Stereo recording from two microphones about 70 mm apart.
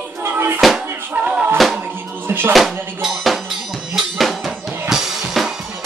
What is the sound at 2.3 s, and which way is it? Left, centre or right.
Speech, right.